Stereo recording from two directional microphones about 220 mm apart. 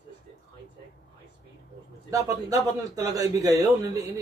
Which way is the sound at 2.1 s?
15° right (ahead or behind).